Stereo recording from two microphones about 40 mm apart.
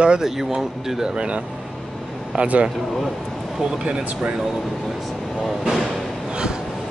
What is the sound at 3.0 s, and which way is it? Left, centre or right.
Speech, centre.